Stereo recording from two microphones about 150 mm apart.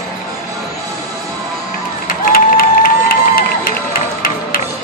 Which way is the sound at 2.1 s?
75° left (ahead or behind).